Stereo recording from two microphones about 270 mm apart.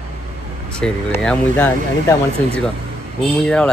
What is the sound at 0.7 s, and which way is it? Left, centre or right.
Speech, centre.